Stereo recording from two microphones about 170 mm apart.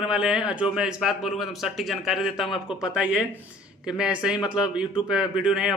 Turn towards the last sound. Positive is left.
turn(degrees=-5)  # may be behind; listen again after turning